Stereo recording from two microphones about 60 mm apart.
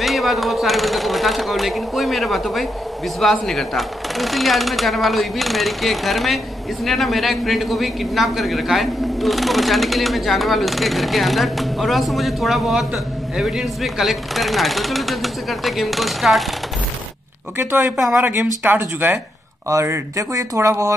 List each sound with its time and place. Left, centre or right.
0.0 s speech: centre
17.6 s speech: right
17.9 s speech: centre
18.4 s speech: right
19.7 s speech: right